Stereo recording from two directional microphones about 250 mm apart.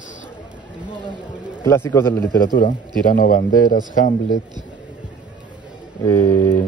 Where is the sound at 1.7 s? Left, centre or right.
Centre.